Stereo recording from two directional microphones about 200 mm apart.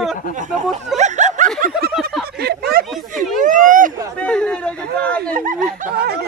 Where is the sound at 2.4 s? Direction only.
50° right (ahead or behind).